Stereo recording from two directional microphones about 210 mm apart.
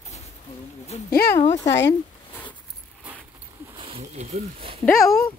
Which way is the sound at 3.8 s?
25° right (ahead or behind).